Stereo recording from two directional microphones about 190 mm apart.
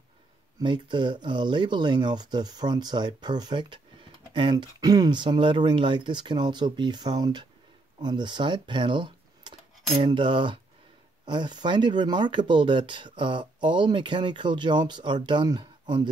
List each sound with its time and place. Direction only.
0.6 s speech: 25° right (ahead or behind)